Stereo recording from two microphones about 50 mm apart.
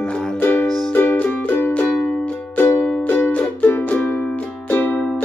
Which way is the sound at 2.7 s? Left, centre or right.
Left.